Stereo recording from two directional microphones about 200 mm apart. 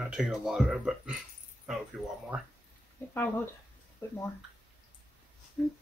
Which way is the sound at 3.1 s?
10° left (ahead or behind).